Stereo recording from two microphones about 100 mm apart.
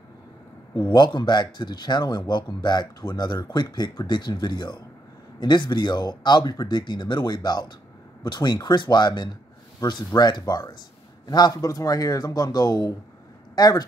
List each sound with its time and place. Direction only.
0.9 s speech: 50° left (ahead or behind)